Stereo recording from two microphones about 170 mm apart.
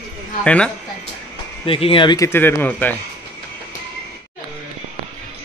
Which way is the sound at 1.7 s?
30° left (ahead or behind).